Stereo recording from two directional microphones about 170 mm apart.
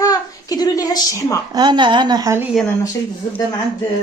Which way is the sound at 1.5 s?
25° right (ahead or behind).